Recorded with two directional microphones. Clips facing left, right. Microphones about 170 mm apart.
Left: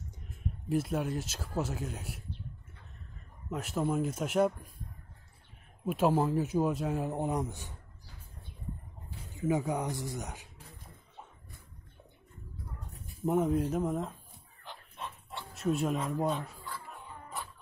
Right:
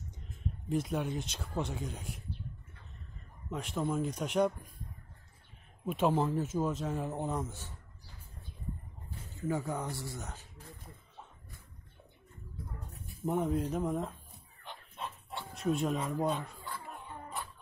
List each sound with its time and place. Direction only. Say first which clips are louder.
0.7 s speech: left 2 dB; 5° left (ahead or behind)
3.4 s speech: left 2 dB; 5° left (ahead or behind)
5.9 s speech: left 2 dB; 5° left (ahead or behind)
9.3 s speech: left 4 dB; 15° left (ahead or behind)
13.2 s speech: left 3 dB; centre (ahead or behind)
15.5 s speech: left 1 dB; 5° left (ahead or behind)